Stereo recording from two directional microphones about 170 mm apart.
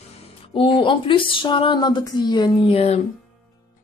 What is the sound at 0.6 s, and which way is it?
A woman's voice, 30° left (ahead or behind).